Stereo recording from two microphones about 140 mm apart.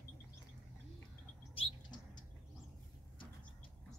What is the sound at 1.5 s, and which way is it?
Bird, 35° left (ahead or behind).